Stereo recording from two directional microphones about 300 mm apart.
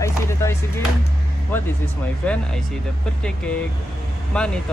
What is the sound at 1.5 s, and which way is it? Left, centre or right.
Speech, centre.